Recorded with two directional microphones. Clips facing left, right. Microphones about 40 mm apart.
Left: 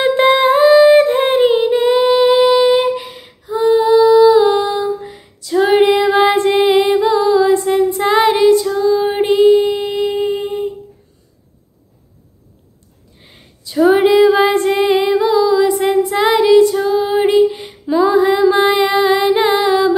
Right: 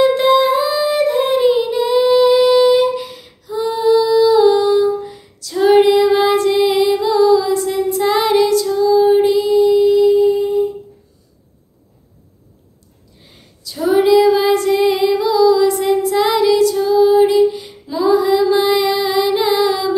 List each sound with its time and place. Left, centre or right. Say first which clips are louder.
0.0 s humming: even; left; by 6.0 s centre
6.0 s music: left 1 dB; left
8.3 s child singing: left 2 dB; left
8.8 s a sound: right 3 dB; left
13.2 s female singing: right 1 dB; left
17.1 s music: right 1 dB; left